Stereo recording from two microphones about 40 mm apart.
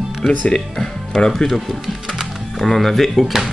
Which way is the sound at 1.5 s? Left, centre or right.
Centre.